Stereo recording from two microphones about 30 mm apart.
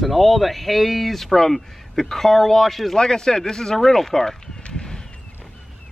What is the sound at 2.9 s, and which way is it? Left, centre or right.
Speech, centre.